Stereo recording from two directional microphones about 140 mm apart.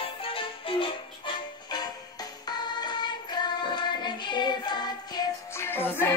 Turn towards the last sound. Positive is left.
turn(degrees=15)  # may be behind; listen again after turning